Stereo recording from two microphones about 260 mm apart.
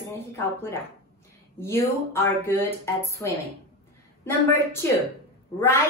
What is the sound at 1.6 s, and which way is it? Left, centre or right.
A woman's voice, centre.